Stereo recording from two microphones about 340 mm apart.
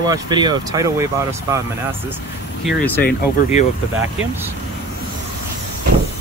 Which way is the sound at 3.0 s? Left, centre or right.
Left.